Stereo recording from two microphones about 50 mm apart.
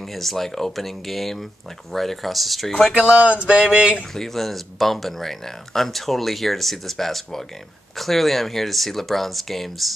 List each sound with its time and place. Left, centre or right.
0.1 s speech: centre
3.2 s mantra: right
3.6 s speech: centre
4.1 s speech: centre